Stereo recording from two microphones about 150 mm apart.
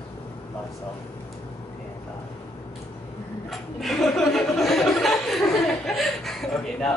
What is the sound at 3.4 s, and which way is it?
Chuckle, centre (ahead or behind).